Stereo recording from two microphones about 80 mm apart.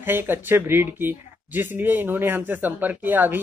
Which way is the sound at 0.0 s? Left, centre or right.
Right.